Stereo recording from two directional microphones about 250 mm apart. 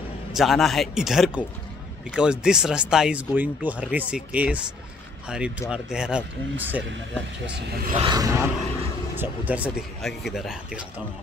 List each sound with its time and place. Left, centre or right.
0.3 s speech: centre
5.7 s speech: centre
7.6 s speech: right
8.0 s a sound: centre
9.1 s speech: centre